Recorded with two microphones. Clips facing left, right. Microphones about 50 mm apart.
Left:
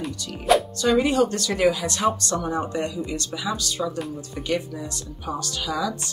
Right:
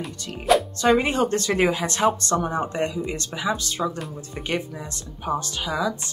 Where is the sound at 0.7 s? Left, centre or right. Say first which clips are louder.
Even; right.